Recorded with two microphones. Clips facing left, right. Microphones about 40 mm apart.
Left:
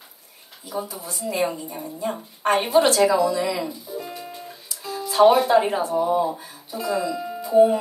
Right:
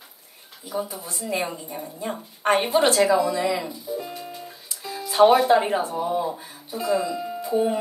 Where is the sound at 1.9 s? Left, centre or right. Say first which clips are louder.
Left 4 dB; centre.